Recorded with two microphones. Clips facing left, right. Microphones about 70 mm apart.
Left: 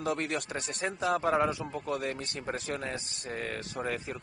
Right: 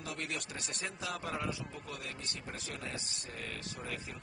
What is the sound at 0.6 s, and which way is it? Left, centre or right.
A man's voice, left.